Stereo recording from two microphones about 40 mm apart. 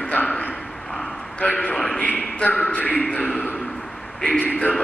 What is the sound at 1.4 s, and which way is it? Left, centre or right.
A man's voice, left.